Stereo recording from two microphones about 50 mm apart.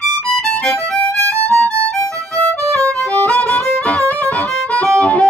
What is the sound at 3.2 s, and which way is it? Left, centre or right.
Music, left.